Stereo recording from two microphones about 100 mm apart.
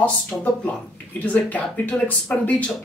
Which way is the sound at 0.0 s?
15° left (ahead or behind).